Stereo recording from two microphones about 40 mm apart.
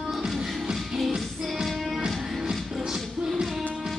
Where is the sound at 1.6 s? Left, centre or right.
Centre.